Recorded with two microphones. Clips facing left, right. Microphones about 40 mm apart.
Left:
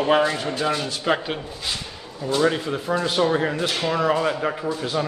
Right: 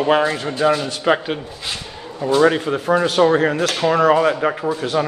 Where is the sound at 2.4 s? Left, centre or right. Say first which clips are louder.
Right 5 dB; right.